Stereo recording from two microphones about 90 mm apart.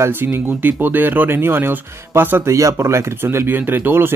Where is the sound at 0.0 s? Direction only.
25° right (ahead or behind).